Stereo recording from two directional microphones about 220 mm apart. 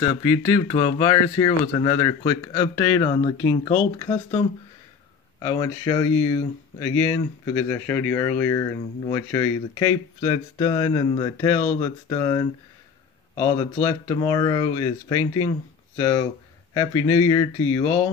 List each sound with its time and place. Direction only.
0.0 s speech: 20° left (ahead or behind)
5.4 s speech: 15° left (ahead or behind)